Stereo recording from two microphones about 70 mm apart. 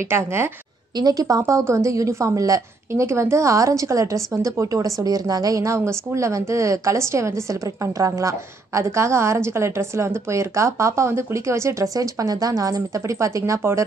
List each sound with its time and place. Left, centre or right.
0.1 s a woman's voice: right
0.9 s a woman's voice: right
11.9 s speech: right
13.6 s a woman's voice: right